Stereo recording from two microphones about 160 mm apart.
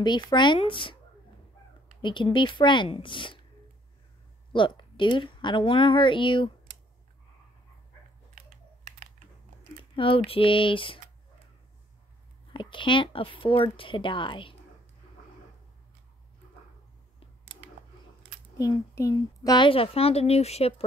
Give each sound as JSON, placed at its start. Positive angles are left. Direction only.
{"t": 0.0, "sound": "speech", "side_deg": 30}
{"t": 2.0, "sound": "a sound", "side_deg": 30}
{"t": 2.3, "sound": "a woman's voice", "side_deg": 30}
{"t": 4.5, "sound": "a woman's voice", "side_deg": 30}
{"t": 8.4, "sound": "computer keyboard", "side_deg": -60}
{"t": 9.9, "sound": "a woman's voice", "side_deg": 35}
{"t": 12.5, "sound": "a woman's voice", "side_deg": 30}
{"t": 18.6, "sound": "a woman's voice", "side_deg": 20}